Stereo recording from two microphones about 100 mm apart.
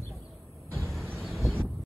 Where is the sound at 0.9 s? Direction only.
Centre (ahead or behind).